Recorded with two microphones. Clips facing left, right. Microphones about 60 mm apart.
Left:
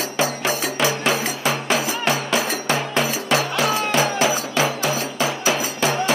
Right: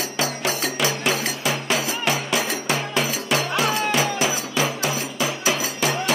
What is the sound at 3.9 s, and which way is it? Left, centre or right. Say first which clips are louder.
Music: left 3 dB; left.